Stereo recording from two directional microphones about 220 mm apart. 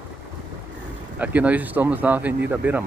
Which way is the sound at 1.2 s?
5° right (ahead or behind).